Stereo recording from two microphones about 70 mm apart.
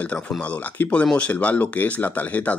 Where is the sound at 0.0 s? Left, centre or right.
Centre.